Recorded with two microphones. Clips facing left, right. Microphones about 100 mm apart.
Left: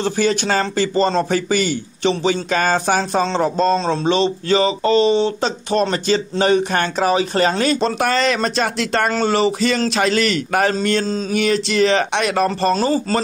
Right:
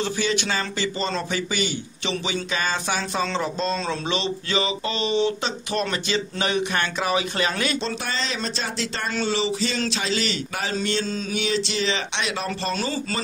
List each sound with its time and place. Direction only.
0.0 s a man's voice: 45° left (ahead or behind)
7.8 s speech: 60° left (ahead or behind)
9.1 s speech: 50° left (ahead or behind)
11.1 s a man's voice: 35° left (ahead or behind)
11.3 s speech: 50° left (ahead or behind)